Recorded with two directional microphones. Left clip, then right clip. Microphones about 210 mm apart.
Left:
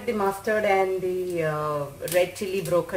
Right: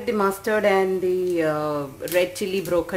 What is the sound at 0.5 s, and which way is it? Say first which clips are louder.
Speech: right 2 dB; 45° right (ahead or behind).